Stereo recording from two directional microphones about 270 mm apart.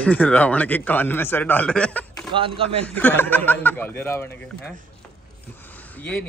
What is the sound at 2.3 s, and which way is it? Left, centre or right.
Speech, centre.